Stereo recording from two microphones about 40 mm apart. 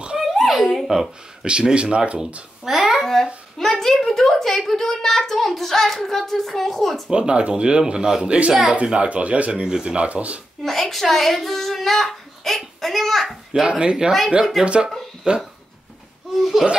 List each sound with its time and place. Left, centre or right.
0.2 s dog: centre
1.4 s speech: right
2.6 s a child's voice: centre
3.5 s a child's voice: centre
7.1 s speech: right
10.6 s a child's voice: centre
13.5 s speech: right
16.3 s a child's voice: centre